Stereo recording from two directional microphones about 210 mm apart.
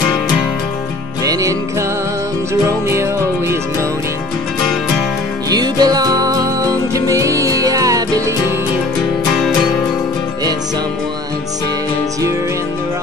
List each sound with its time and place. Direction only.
1.2 s music: 15° right (ahead or behind)
2.9 s music: 10° right (ahead or behind)
5.5 s music: 20° right (ahead or behind)